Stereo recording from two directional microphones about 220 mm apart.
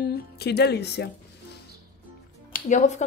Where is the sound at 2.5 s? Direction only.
35° left (ahead or behind).